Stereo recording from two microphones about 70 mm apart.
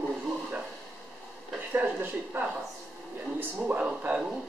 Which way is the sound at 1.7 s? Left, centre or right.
Right.